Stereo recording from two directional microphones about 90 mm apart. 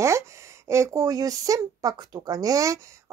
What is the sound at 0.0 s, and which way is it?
Speech, 35° right (ahead or behind).